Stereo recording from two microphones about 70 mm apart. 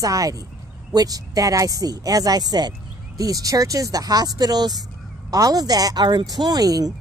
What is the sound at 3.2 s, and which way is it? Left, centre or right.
A woman's voice, right.